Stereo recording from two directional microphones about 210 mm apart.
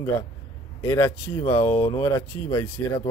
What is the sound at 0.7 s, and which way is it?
A man's voice, 15° left (ahead or behind).